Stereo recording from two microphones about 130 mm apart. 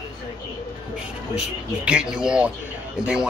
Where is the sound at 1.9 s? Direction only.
5° right (ahead or behind).